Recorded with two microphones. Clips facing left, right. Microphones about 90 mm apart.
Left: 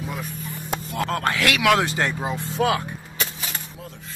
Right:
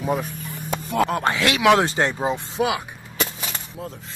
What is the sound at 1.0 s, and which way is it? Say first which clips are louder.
Speech: even; 20° right (ahead or behind).